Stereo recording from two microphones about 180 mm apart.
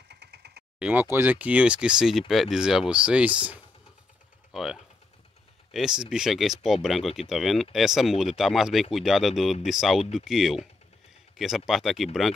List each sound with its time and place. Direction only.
0.1 s engine: 65° right (ahead or behind)
0.7 s speech: 5° right (ahead or behind)